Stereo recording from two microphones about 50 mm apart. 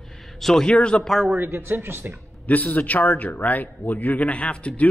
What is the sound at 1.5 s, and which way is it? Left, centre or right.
Speech, right.